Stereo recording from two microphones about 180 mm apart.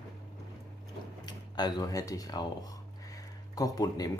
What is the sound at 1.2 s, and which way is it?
Speech, 20° left (ahead or behind).